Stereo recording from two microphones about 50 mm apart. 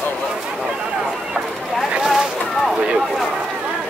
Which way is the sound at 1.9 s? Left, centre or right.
Centre.